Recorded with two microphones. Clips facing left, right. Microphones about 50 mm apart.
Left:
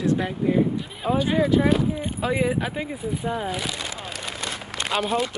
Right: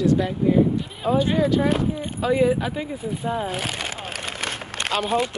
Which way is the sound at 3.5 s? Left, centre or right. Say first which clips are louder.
Right 2 dB; right.